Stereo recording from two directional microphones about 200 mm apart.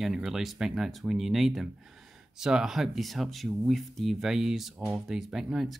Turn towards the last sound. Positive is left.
turn(degrees=0)  # may be behind; listen again after turning